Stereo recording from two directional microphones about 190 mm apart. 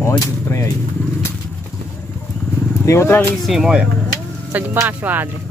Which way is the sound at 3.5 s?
5° right (ahead or behind).